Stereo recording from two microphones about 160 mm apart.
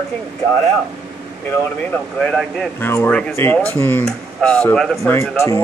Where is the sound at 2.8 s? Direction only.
15° left (ahead or behind).